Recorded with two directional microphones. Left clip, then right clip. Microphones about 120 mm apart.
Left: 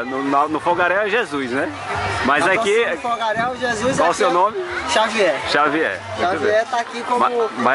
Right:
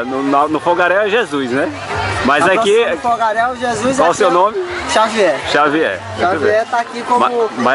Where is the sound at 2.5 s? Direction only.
30° right (ahead or behind).